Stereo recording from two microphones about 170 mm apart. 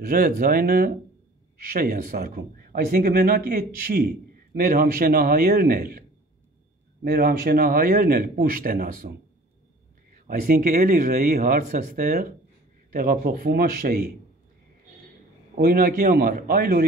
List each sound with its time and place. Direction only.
0.0 s speech: 60° right (ahead or behind)
10.1 s speech: 55° right (ahead or behind)
15.5 s speech: 60° right (ahead or behind)